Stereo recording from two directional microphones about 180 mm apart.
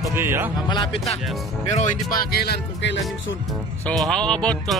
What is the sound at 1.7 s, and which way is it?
Speech, 45° left (ahead or behind).